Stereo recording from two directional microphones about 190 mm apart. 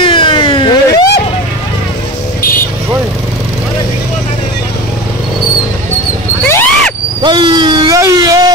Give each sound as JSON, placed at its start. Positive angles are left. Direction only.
{"t": 0.0, "sound": "vehicle", "side_deg": 25}
{"t": 6.4, "sound": "wild animals", "side_deg": 10}
{"t": 7.2, "sound": "a sound", "side_deg": -25}